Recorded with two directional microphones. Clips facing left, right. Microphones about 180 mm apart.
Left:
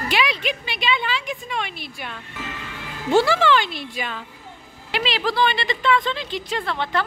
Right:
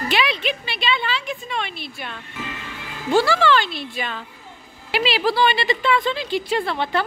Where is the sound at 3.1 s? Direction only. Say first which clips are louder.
Even; 20° left (ahead or behind).